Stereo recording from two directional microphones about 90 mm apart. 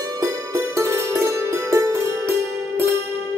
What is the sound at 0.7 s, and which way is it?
Music, 30° right (ahead or behind).